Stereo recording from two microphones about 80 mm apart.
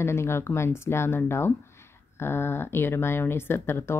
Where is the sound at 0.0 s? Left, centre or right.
Left.